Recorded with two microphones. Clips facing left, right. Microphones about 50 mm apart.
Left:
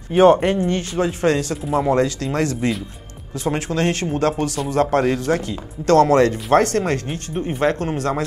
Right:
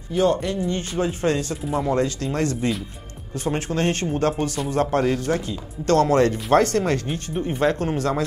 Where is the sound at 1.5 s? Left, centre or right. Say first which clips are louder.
Left 4 dB; centre.